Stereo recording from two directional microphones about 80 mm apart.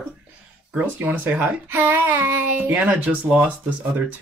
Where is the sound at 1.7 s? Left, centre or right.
Right.